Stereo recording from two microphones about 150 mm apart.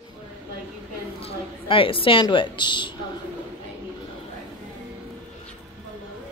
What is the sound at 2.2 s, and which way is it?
Speech, 30° left (ahead or behind).